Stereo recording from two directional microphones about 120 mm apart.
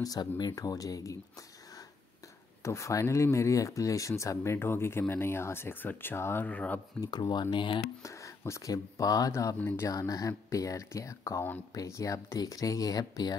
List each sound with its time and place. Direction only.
0.0 s speech: 35° left (ahead or behind)
2.6 s speech: 25° left (ahead or behind)
7.0 s speech: 35° left (ahead or behind)
8.0 s speech: 25° left (ahead or behind)
9.6 s speech: 15° left (ahead or behind)
9.8 s speech: 30° left (ahead or behind)